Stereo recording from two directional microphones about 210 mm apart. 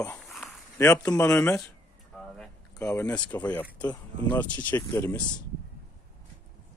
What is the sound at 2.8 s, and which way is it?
Speech, 10° left (ahead or behind).